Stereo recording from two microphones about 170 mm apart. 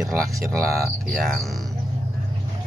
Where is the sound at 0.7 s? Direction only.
60° right (ahead or behind).